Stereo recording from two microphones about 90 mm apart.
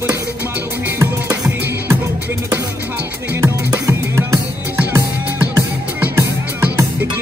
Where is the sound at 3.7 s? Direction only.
40° right (ahead or behind).